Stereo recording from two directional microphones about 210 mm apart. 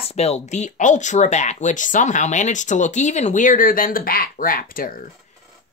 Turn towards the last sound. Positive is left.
turn(degrees=40)  # may be behind; listen again after turning